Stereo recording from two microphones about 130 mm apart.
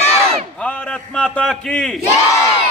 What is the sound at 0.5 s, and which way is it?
A man's voice, 10° left (ahead or behind).